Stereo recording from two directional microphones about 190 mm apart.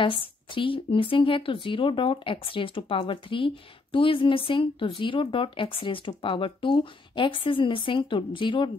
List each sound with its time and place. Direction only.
0.0 s speech: 25° left (ahead or behind)